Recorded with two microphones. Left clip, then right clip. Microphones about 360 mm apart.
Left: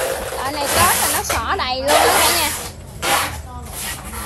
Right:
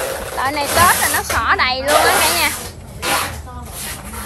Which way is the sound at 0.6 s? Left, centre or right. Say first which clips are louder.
Right 3 dB; centre.